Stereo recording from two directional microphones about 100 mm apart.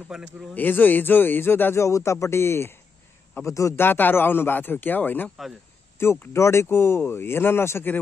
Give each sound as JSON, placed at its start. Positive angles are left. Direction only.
{"t": 0.1, "sound": "a man's voice", "side_deg": -5}
{"t": 0.6, "sound": "speech", "side_deg": 20}